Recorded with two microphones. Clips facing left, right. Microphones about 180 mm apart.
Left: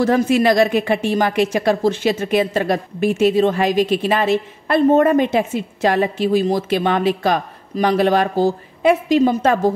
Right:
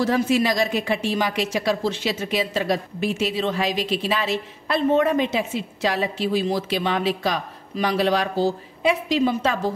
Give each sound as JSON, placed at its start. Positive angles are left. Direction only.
{"t": 0.0, "sound": "a woman's voice", "side_deg": 55}